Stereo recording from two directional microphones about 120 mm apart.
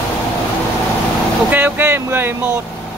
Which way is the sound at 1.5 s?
15° right (ahead or behind).